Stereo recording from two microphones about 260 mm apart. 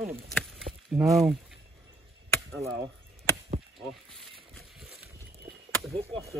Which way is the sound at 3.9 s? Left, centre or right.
Centre.